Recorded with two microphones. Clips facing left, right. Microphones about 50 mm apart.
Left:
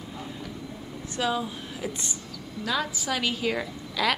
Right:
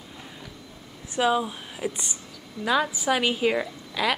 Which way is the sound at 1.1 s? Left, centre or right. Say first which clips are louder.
Right 5 dB; centre.